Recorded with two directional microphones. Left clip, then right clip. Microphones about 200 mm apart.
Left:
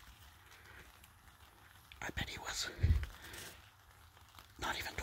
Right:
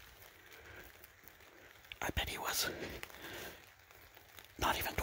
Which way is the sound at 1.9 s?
30° right (ahead or behind).